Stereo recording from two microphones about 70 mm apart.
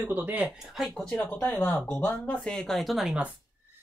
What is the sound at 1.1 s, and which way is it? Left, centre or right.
Speech, left.